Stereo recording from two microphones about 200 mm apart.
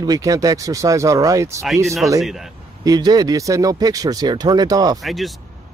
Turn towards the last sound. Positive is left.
turn(degrees=0)  # may be behind; listen again after turning